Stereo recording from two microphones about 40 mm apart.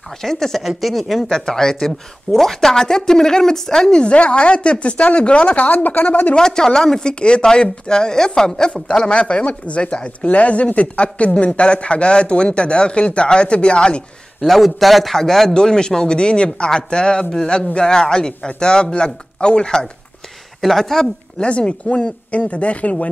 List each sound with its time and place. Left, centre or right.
0.2 s a woman's voice: centre
0.6 s a man's voice: centre
1.3 s a woman's voice: centre
4.0 s speech: left
5.7 s speech: left
6.3 s a woman's voice: centre
14.4 s a man's voice: centre; by 19.9 s left
20.6 s a woman's voice: centre
21.4 s speech: left